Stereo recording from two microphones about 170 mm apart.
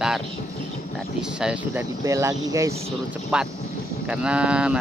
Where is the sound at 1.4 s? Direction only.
5° right (ahead or behind).